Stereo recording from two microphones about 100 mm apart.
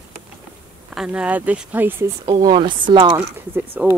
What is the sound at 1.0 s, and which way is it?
Speech, 15° right (ahead or behind).